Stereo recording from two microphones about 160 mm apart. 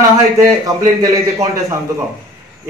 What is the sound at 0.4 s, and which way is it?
A man's voice, 20° right (ahead or behind).